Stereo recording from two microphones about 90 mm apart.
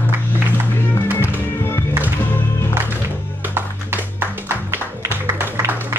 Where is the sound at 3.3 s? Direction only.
20° right (ahead or behind).